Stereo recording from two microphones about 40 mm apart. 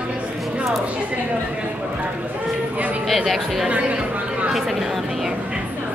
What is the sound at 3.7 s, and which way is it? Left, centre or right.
Chatter, right.